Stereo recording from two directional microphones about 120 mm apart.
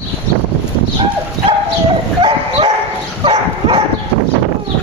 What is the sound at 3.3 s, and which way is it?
Bow-wow, 45° right (ahead or behind).